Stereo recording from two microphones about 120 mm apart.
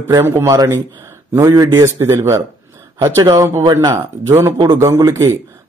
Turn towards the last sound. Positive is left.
turn(degrees=-25)  # may be behind; listen again after turning